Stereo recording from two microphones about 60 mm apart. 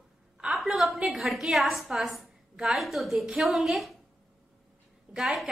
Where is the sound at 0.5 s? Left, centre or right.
Centre.